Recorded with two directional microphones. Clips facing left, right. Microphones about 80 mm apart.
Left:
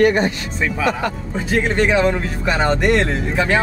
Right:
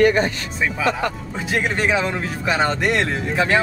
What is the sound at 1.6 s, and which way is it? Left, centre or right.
Speech, centre.